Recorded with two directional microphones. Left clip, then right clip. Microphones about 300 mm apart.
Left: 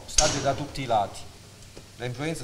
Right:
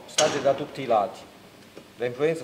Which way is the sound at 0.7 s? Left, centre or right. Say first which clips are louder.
Right 2 dB; left.